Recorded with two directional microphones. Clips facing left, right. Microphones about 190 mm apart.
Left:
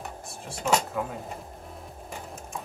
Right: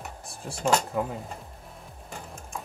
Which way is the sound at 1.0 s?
25° right (ahead or behind).